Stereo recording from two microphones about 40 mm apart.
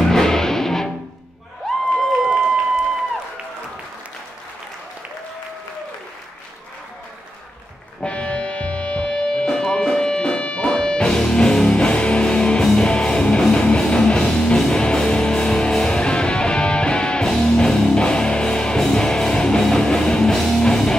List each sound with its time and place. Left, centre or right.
0.0 s music: centre
8.0 s music: left
20.3 s music: centre